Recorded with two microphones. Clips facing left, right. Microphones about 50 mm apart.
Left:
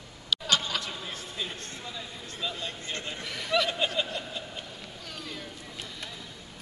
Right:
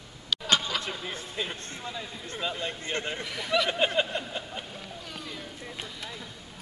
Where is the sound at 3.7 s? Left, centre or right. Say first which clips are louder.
Right 3 dB; right.